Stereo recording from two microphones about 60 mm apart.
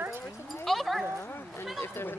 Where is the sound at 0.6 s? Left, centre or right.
Centre.